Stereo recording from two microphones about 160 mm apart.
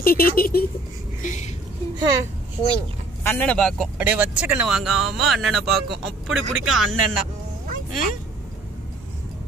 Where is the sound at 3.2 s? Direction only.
10° left (ahead or behind).